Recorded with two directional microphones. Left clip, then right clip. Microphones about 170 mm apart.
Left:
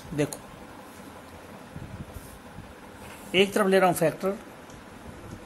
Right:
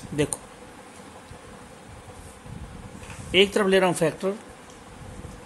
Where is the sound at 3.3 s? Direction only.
25° right (ahead or behind).